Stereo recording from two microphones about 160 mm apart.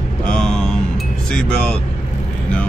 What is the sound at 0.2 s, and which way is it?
Mantra, 5° left (ahead or behind).